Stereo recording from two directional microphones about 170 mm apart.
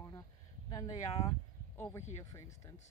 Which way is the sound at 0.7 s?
25° left (ahead or behind).